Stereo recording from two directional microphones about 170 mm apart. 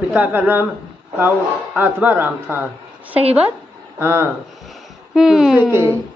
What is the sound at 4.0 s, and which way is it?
Speech, 15° right (ahead or behind).